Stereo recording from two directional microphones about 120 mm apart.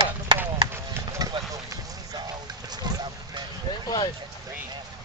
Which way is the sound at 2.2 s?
35° right (ahead or behind).